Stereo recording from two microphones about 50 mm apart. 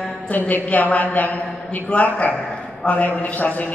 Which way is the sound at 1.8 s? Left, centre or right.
Left.